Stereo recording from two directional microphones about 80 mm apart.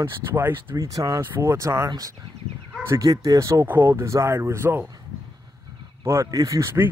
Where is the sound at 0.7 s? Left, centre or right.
Right.